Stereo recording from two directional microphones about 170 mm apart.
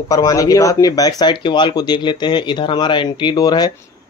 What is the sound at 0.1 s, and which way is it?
Speech, 20° left (ahead or behind).